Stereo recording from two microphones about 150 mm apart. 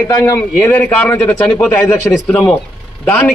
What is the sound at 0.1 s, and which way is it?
A man's voice, 20° left (ahead or behind).